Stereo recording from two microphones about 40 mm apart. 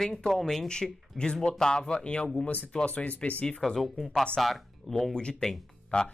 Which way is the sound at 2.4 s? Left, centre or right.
Left.